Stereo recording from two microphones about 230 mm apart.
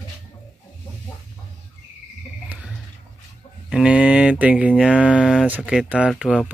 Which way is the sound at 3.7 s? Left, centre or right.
Centre.